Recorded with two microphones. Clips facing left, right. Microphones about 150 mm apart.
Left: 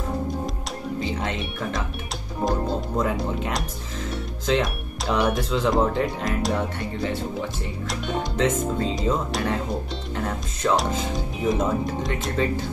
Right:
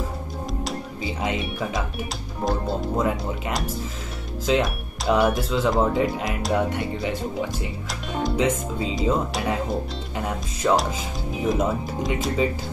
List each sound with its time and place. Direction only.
1.0 s speech: 5° right (ahead or behind)
3.0 s speech: 5° right (ahead or behind)
8.1 s speech: centre (ahead or behind)